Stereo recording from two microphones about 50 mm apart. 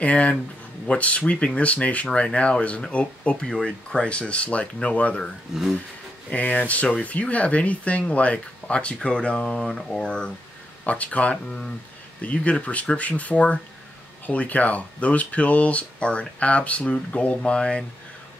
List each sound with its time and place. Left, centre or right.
0.0 s speech: left
5.5 s speech: centre
6.3 s speech: left